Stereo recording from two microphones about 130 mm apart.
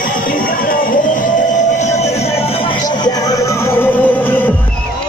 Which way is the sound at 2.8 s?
30° left (ahead or behind).